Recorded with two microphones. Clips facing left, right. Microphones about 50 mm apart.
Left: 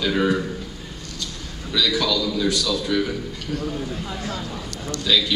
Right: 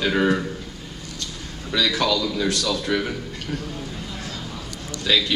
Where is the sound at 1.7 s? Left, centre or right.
Right.